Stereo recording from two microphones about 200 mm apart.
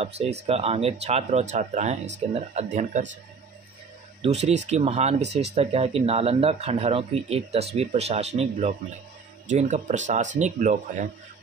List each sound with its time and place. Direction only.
0.0 s speech: 30° right (ahead or behind)
4.2 s speech: 30° right (ahead or behind)